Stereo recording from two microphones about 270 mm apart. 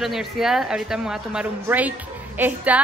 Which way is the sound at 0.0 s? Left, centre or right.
Centre.